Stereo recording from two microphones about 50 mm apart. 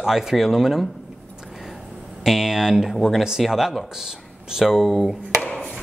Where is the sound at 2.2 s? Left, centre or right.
Centre.